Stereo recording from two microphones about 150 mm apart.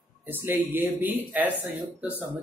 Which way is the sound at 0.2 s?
15° right (ahead or behind).